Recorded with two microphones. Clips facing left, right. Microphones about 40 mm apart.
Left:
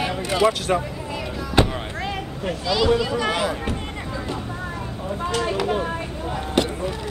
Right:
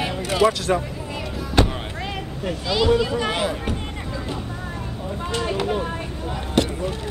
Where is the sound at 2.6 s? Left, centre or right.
Right.